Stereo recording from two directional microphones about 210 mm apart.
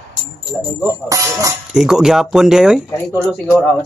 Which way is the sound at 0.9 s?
15° right (ahead or behind).